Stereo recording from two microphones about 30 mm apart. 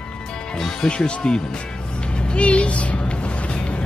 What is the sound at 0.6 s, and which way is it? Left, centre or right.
Speech, centre.